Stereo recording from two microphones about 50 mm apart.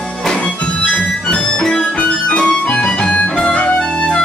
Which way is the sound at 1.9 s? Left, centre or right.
Left.